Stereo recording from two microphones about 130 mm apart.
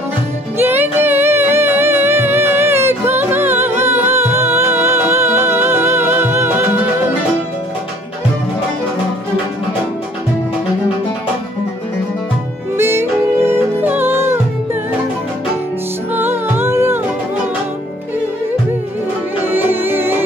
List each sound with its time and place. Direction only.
0.6 s music: 15° right (ahead or behind)
12.7 s music: 20° right (ahead or behind)
16.1 s music: 15° right (ahead or behind)
19.5 s music: 15° right (ahead or behind)